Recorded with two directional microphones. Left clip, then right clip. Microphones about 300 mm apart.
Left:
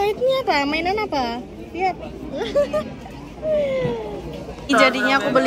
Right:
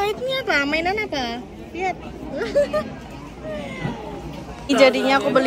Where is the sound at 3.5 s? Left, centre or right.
Right.